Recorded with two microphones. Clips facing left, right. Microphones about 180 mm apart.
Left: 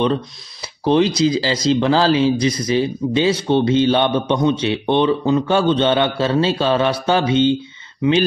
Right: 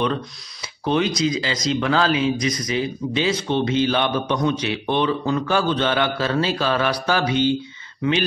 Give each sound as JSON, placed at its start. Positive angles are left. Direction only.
{"t": 0.0, "sound": "speech", "side_deg": 30}